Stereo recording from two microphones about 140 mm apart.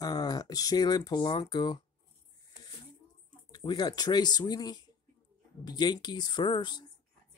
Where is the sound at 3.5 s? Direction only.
30° left (ahead or behind).